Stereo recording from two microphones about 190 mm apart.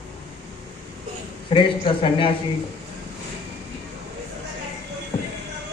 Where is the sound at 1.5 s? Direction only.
30° left (ahead or behind).